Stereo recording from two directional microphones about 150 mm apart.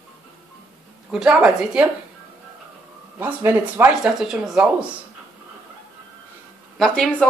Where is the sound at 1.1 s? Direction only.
5° right (ahead or behind).